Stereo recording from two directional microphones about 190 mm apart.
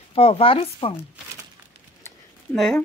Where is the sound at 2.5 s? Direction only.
Centre (ahead or behind).